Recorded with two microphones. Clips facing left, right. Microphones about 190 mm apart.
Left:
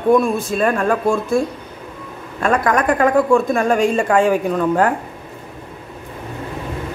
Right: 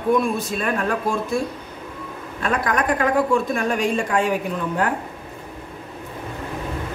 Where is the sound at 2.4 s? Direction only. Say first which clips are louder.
Left 5 dB; 50° left (ahead or behind).